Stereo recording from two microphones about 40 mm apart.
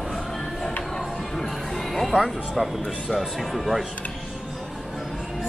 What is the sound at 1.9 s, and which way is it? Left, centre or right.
Speech, centre.